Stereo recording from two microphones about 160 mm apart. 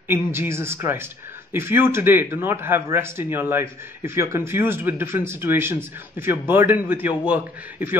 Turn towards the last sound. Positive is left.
turn(degrees=-10)  # may be behind; listen again after turning